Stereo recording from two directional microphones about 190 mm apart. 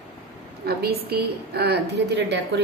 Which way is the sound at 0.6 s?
55° right (ahead or behind).